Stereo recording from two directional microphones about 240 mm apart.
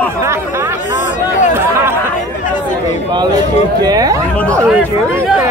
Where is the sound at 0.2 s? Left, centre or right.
Centre.